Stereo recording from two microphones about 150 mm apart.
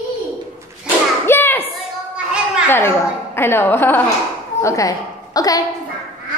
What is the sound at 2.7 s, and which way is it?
A woman's voice, 15° left (ahead or behind).